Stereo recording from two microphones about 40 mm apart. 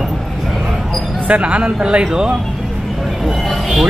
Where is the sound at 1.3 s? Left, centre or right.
Right.